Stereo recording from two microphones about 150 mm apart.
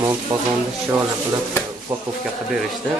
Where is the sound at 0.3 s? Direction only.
25° right (ahead or behind).